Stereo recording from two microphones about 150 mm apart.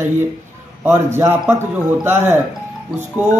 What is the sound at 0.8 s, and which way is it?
A man's voice, 15° right (ahead or behind).